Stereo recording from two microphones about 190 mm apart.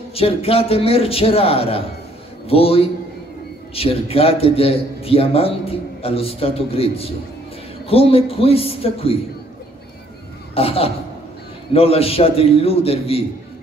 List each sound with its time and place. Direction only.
0.1 s a man's voice: 30° left (ahead or behind)
10.5 s a man's voice: 30° left (ahead or behind)